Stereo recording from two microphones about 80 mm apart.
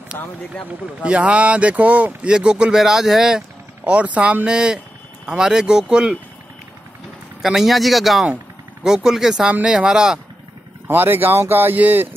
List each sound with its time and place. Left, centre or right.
0.1 s speech: left
1.0 s speech: centre
7.4 s a man's voice: centre
10.9 s speech: right